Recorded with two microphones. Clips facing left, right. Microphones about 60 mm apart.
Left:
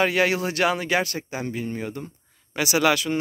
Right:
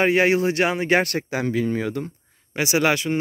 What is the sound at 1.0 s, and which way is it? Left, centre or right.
Speech, right.